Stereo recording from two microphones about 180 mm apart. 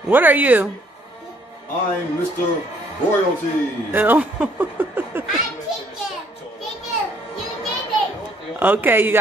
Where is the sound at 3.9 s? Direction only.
10° right (ahead or behind).